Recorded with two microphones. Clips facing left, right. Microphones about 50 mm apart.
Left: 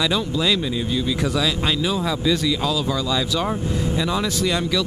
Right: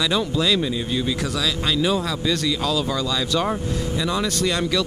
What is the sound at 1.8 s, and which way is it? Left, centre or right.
A man's voice, centre.